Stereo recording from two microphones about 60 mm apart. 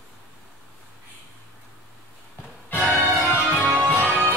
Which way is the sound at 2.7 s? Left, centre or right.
Left.